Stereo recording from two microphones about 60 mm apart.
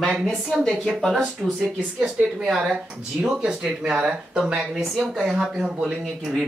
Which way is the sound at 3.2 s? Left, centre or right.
Centre.